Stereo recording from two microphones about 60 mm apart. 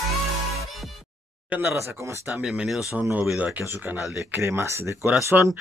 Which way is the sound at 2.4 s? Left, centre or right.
Centre.